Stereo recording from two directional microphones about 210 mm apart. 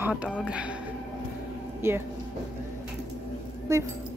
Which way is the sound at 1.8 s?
10° right (ahead or behind).